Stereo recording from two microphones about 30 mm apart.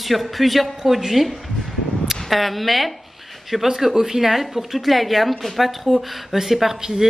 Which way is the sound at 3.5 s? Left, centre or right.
Centre.